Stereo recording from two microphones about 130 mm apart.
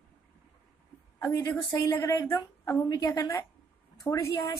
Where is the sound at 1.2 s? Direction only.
20° left (ahead or behind).